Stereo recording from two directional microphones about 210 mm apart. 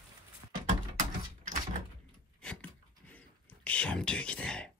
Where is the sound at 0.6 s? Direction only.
40° right (ahead or behind).